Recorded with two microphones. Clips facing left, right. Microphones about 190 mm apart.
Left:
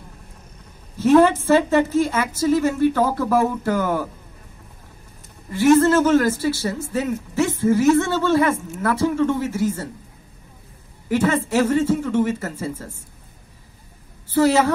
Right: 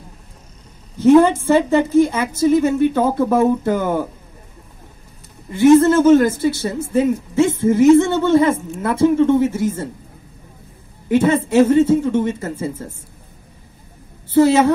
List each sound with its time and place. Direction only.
0.9 s a woman's voice: 15° right (ahead or behind)
5.5 s a woman's voice: 15° right (ahead or behind)
11.1 s a woman's voice: 20° right (ahead or behind)
14.3 s a woman's voice: 20° right (ahead or behind)